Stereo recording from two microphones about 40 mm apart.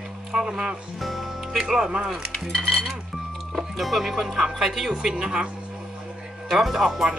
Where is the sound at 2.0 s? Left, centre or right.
Centre.